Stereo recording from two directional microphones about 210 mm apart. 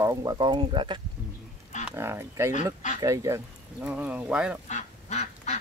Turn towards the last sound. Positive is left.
turn(degrees=35)  # may be behind; listen again after turning